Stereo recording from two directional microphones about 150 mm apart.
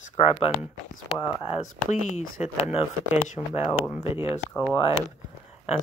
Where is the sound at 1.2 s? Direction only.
30° left (ahead or behind).